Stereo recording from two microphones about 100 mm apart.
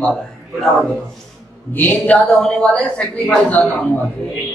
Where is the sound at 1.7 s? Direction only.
15° left (ahead or behind).